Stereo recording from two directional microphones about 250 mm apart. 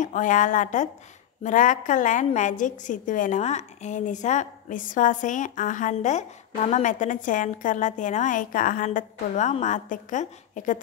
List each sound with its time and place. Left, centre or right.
0.0 s a woman's voice: left